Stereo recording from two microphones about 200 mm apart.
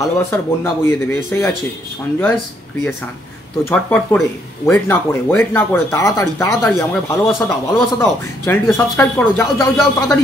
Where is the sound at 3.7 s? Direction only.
5° left (ahead or behind).